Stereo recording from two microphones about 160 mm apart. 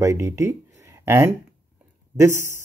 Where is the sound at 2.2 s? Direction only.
15° right (ahead or behind).